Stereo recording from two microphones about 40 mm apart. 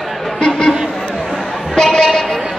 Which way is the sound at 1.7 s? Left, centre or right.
Centre.